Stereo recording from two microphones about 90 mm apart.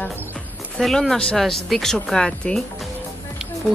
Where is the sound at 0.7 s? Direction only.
5° left (ahead or behind).